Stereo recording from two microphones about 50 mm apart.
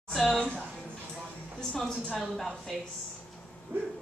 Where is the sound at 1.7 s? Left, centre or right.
Centre.